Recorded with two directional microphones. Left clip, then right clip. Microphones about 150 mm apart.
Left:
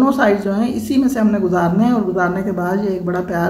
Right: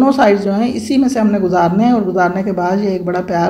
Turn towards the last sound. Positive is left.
turn(degrees=-15)  # may be behind; listen again after turning